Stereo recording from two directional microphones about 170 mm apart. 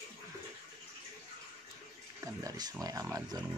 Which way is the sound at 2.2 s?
20° right (ahead or behind).